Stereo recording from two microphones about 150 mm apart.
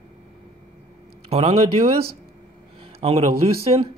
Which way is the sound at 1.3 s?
45° right (ahead or behind).